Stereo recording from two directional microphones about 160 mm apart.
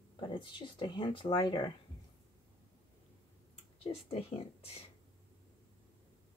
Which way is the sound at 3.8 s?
40° left (ahead or behind).